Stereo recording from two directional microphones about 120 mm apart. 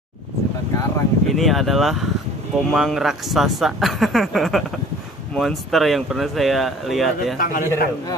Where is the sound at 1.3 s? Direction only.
Centre (ahead or behind).